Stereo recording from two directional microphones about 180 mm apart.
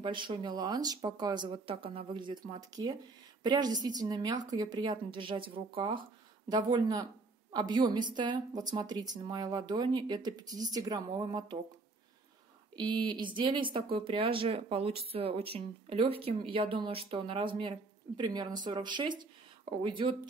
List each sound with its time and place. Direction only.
0.0 s speech: 25° right (ahead or behind)
12.7 s speech: 25° right (ahead or behind)